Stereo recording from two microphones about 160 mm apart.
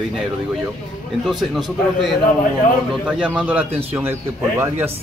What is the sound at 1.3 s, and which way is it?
A man's voice, centre (ahead or behind).